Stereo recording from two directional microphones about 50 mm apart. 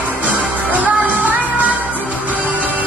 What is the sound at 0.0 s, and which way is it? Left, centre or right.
Music, right.